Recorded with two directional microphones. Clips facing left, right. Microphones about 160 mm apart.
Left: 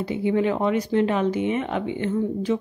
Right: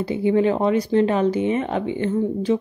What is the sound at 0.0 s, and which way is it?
Speech, 35° right (ahead or behind).